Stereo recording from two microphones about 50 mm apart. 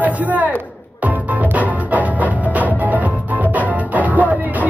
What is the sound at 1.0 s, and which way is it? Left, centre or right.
Music, right.